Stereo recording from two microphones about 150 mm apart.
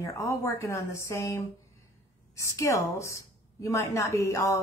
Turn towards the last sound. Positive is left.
turn(degrees=20)  # may be behind; listen again after turning